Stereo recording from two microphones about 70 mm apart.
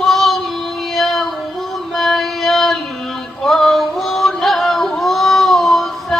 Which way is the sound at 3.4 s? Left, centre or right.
Centre.